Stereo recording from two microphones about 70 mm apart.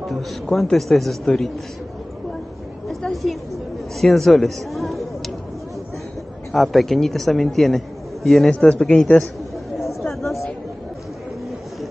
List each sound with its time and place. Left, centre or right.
0.0 s a man's voice: centre
2.9 s a sound: centre
4.0 s speech: centre
6.5 s a man's voice: centre
8.5 s speech: centre